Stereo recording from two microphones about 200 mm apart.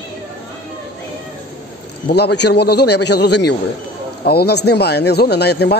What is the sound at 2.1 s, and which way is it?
A man's voice, 55° left (ahead or behind).